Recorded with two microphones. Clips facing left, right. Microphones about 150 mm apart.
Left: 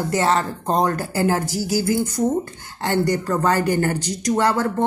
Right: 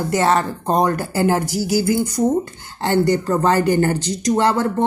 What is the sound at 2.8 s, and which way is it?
Speech, 30° right (ahead or behind).